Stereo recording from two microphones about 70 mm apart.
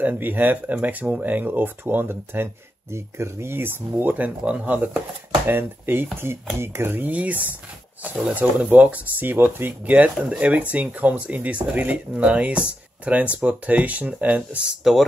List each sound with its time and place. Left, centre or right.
0.0 s speech: right
14.8 s speech: centre